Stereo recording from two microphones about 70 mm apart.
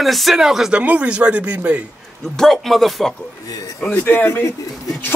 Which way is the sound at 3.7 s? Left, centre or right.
Left.